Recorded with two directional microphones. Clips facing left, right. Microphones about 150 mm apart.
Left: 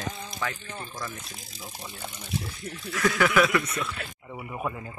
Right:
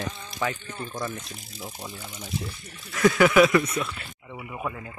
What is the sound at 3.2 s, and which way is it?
Speech, 20° right (ahead or behind).